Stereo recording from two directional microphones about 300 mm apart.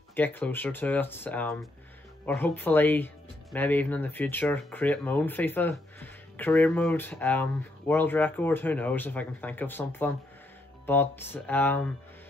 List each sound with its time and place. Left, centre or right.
0.1 s speech: centre